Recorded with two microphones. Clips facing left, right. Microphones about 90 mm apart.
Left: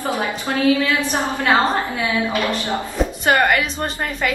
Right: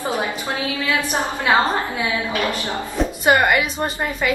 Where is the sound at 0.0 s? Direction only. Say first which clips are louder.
Left 1 dB; 20° right (ahead or behind).